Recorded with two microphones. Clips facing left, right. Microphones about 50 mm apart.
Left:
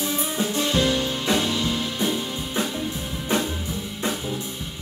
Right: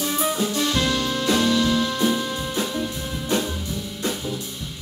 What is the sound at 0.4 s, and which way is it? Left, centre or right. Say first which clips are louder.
Music: even; left.